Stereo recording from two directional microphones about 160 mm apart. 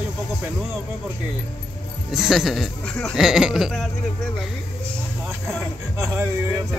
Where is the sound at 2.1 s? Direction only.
5° right (ahead or behind).